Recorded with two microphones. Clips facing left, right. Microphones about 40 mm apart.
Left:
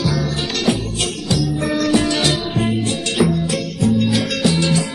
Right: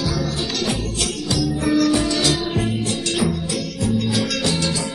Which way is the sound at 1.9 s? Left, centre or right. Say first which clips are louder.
Left 2 dB; left.